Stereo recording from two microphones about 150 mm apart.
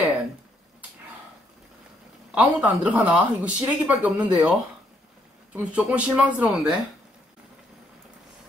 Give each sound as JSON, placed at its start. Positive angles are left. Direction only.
{"t": 2.3, "sound": "speech", "side_deg": -10}